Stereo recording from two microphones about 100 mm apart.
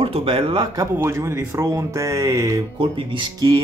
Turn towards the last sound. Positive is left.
turn(degrees=-55)  # may be behind; listen again after turning